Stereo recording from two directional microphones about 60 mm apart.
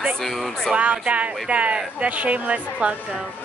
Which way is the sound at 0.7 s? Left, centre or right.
Right.